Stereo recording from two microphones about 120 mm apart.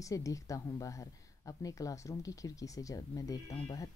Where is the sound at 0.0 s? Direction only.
25° left (ahead or behind).